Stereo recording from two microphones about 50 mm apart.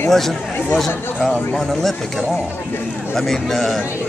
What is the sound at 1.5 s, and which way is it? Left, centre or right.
Speech, centre.